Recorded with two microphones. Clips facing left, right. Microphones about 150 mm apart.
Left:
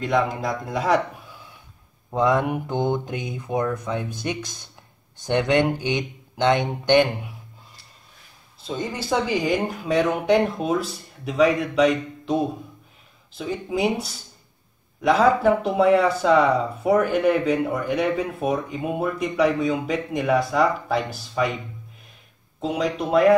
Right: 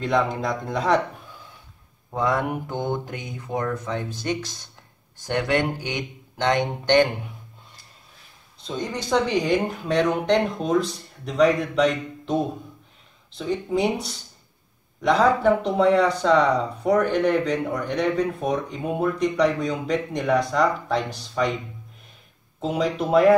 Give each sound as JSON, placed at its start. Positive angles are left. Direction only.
{"t": 0.0, "sound": "speech", "side_deg": 0}
{"t": 2.0, "sound": "speech", "side_deg": 15}
{"t": 8.5, "sound": "speech", "side_deg": 5}
{"t": 22.6, "sound": "speech", "side_deg": 0}